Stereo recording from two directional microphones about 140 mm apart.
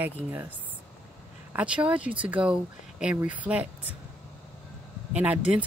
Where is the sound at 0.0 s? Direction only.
15° right (ahead or behind).